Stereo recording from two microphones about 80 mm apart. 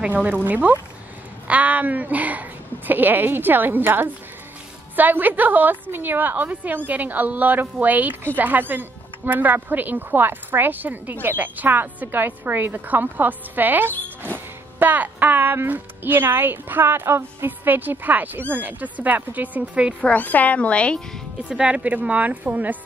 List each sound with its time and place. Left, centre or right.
0.0 s a woman's voice: centre
20.0 s a child's voice: centre
21.5 s a woman's voice: centre